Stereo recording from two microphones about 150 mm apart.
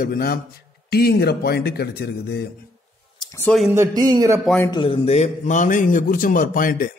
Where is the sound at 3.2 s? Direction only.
20° left (ahead or behind).